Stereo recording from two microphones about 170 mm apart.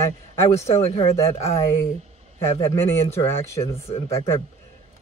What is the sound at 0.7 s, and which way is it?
Speech, 35° left (ahead or behind).